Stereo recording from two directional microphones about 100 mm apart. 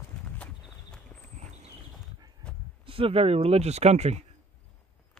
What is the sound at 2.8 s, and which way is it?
Speech, 70° right (ahead or behind).